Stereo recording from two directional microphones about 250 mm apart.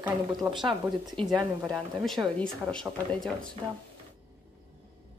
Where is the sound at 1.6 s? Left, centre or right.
Centre.